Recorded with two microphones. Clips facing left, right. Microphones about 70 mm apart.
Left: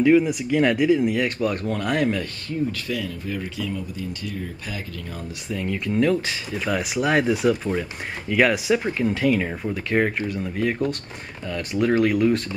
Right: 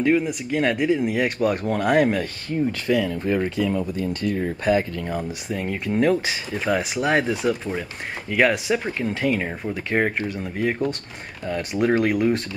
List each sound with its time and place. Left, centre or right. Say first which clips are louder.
0.0 s speech: left 3 dB; centre
2.9 s speech: right 7 dB; right
5.1 s speech: right 2 dB; right
12.0 s speech: left 1 dB; centre